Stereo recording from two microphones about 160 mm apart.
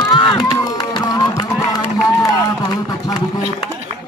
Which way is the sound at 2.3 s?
25° left (ahead or behind).